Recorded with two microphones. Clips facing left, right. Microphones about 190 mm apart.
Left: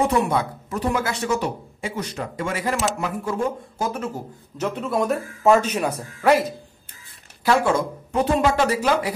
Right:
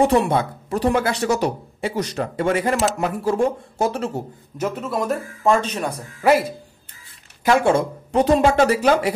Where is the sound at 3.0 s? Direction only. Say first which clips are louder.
Right 5 dB; 35° right (ahead or behind).